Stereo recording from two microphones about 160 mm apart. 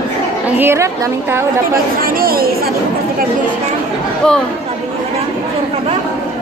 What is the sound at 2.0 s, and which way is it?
Chatter, 65° right (ahead or behind).